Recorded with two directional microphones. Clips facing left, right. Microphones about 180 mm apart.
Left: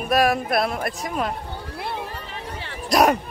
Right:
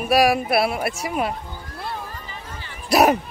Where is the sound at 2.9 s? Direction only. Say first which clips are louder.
Right 1 dB; 5° right (ahead or behind).